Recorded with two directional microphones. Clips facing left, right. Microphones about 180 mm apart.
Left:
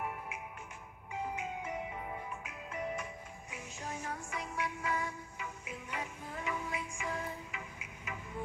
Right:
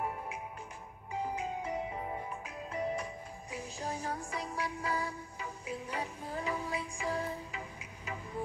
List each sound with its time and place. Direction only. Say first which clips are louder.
1.1 s music: right 3 dB; 35° right (ahead or behind)